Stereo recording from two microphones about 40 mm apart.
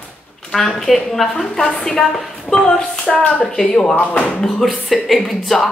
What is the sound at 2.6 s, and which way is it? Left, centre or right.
Speech, centre.